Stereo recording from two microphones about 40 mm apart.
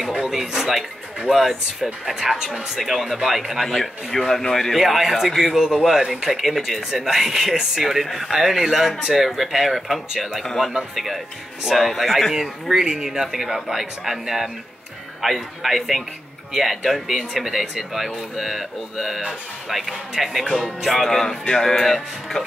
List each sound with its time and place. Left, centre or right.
0.1 s speech: centre
2.8 s speech: centre
3.6 s speech: centre
4.7 s speech: centre
10.6 s speech: centre
11.6 s speech: centre
20.4 s speech: centre
20.8 s speech: centre